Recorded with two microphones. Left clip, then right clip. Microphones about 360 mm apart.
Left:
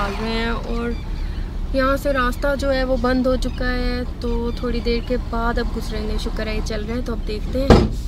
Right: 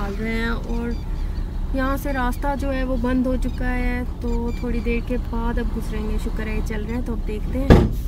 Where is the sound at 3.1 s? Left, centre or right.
Left.